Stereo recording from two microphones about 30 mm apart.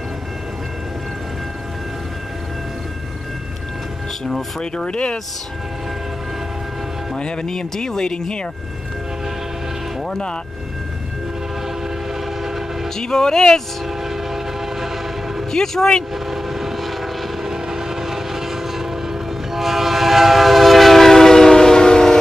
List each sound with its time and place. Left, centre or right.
4.6 s speech: left
7.2 s speech: left
12.9 s speech: centre
13.8 s train: centre
15.5 s speech: centre
16.3 s train: centre
17.4 s train: centre; by 22.1 s left